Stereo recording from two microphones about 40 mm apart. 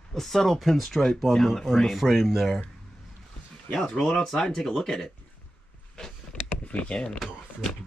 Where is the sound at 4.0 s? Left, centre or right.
Centre.